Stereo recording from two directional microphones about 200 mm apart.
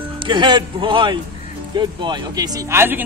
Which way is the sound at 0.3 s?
20° right (ahead or behind).